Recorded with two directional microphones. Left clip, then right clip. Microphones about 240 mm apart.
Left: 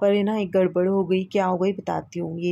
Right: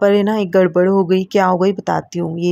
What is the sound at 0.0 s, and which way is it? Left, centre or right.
Speech, right.